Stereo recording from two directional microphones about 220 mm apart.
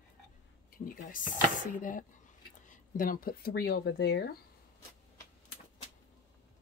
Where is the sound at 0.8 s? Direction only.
40° left (ahead or behind).